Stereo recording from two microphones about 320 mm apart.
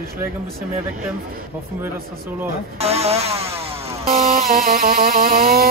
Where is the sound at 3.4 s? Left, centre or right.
Centre; by 5.7 s right.